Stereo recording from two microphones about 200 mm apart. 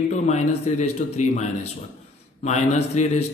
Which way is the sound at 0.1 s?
35° left (ahead or behind).